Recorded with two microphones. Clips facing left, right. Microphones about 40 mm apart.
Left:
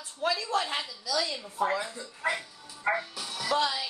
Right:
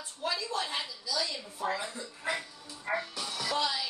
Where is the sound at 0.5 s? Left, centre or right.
Left.